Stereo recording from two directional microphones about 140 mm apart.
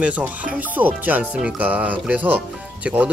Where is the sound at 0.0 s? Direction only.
10° right (ahead or behind).